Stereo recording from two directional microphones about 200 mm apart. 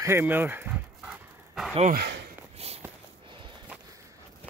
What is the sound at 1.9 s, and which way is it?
Speech, 55° right (ahead or behind).